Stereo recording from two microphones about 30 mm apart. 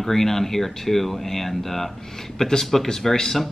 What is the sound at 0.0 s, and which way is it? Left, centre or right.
Speech, centre.